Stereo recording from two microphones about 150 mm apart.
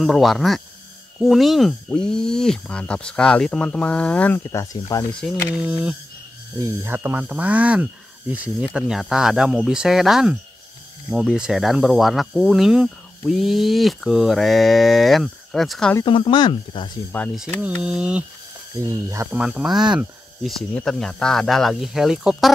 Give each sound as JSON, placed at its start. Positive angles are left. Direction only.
{"t": 0.0, "sound": "speech", "side_deg": 0}
{"t": 4.4, "sound": "speech", "side_deg": 20}
{"t": 5.5, "sound": "speech", "side_deg": -5}
{"t": 16.1, "sound": "speech", "side_deg": 35}
{"t": 17.1, "sound": "speech", "side_deg": 10}
{"t": 17.8, "sound": "speech", "side_deg": -5}
{"t": 18.8, "sound": "speech", "side_deg": -20}
{"t": 19.3, "sound": "speech", "side_deg": -5}